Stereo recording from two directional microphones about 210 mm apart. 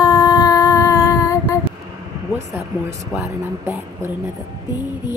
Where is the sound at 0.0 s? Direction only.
15° left (ahead or behind).